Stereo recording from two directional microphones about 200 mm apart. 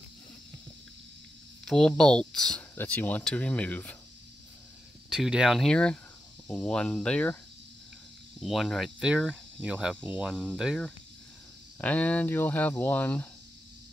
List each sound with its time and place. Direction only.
1.7 s speech: 5° left (ahead or behind)
5.1 s speech: 5° right (ahead or behind)
8.4 s speech: centre (ahead or behind)